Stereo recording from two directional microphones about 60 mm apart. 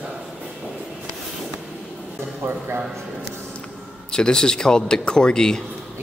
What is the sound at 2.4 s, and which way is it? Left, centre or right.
Speech, right.